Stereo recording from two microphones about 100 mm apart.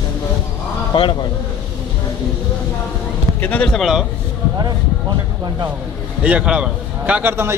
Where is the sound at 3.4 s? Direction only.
15° left (ahead or behind).